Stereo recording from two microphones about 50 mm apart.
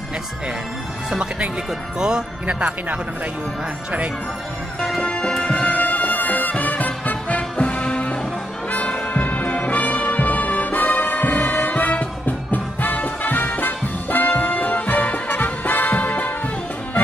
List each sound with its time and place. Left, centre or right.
1.1 s speech: centre
2.4 s speech: right
5.0 s music: centre